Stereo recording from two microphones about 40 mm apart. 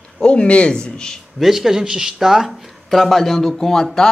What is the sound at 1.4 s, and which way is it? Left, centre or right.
Speech, centre.